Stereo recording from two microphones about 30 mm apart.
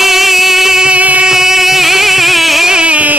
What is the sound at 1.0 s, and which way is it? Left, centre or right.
Music, right.